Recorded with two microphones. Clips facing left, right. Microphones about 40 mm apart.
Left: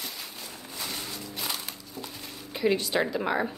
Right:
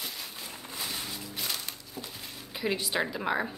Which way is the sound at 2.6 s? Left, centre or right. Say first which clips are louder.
Left 5 dB; centre.